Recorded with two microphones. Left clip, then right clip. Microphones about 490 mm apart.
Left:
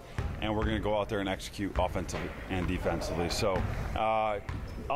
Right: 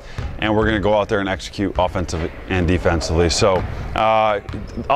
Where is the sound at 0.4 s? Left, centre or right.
Right.